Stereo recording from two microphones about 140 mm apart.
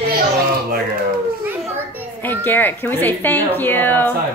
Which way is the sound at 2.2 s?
15° left (ahead or behind).